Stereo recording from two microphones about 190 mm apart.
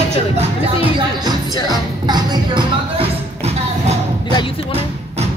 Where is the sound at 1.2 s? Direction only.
20° right (ahead or behind).